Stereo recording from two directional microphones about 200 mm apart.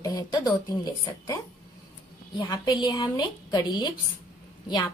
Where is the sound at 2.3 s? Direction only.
20° left (ahead or behind).